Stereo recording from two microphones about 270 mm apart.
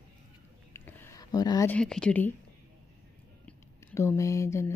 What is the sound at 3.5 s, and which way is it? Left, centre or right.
Speech, centre.